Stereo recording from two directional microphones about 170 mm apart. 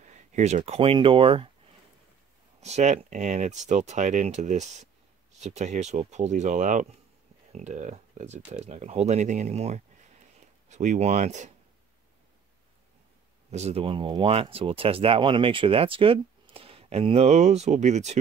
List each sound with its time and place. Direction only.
0.0 s speech: 45° right (ahead or behind)
2.6 s speech: 40° right (ahead or behind)
13.5 s speech: 40° right (ahead or behind)